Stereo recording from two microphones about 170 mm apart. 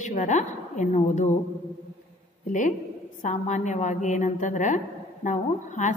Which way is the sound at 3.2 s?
45° left (ahead or behind).